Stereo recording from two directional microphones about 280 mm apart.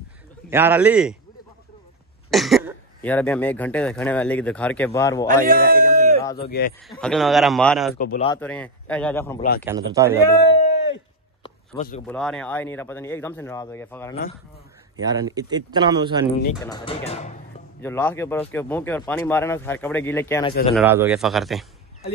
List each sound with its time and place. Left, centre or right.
0.5 s speech: centre
2.3 s speech: centre
5.3 s a sound: right
6.8 s speech: centre
7.9 s speech: left
8.4 s speech: centre
9.7 s speech: centre
10.7 s a sound: left
11.4 s a sound: left
12.1 s speech: centre
15.0 s speech: centre
16.6 s speech: centre
17.8 s speech: centre
20.7 s speech: centre